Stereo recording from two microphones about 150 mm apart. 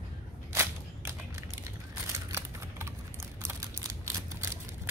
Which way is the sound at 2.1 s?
20° right (ahead or behind).